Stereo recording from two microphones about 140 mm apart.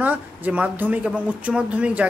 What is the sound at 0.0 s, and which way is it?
Speech, 10° right (ahead or behind).